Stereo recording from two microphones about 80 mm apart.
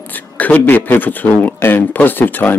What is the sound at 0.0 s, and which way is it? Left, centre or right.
Speech, left.